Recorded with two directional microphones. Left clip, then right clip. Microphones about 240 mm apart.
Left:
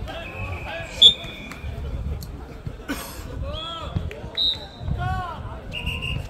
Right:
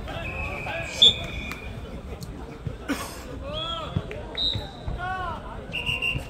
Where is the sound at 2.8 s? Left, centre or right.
Centre.